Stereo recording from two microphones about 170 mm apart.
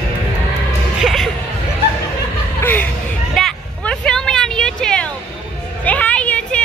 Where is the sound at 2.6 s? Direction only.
10° left (ahead or behind).